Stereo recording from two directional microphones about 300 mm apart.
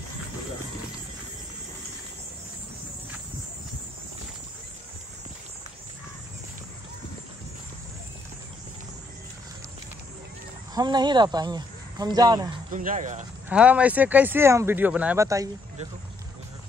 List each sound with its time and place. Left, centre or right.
10.7 s speech: centre
12.7 s speech: right
13.5 s speech: centre